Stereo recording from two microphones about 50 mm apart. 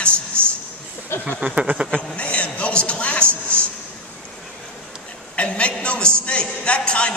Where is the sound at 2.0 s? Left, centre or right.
Left.